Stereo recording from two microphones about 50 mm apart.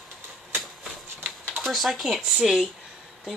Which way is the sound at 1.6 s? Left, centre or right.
Centre.